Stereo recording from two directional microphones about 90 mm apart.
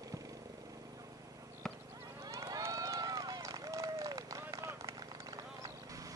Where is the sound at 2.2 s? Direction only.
45° right (ahead or behind).